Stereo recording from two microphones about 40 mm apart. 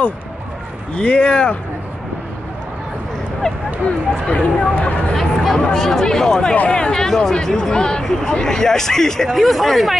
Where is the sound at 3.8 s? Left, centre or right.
Left.